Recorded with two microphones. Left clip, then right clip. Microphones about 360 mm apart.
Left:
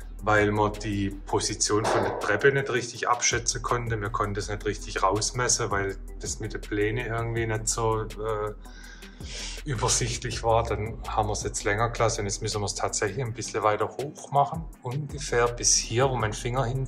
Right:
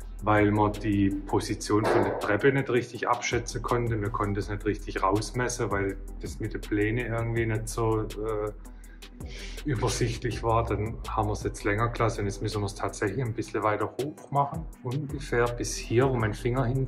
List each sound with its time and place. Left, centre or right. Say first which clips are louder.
0.2 s speech: left 1 dB; centre